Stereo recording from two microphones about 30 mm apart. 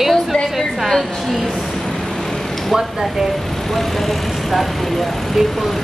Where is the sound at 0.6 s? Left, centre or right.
Centre.